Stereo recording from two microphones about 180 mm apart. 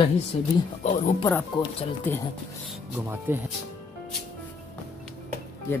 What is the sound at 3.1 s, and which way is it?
Speech, 10° right (ahead or behind).